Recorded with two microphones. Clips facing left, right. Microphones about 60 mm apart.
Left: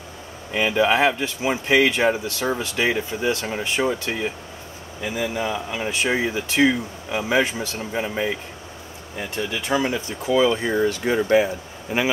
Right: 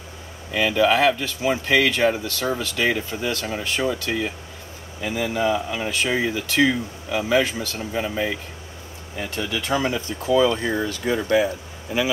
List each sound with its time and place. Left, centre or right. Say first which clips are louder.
0.5 s speech: even; left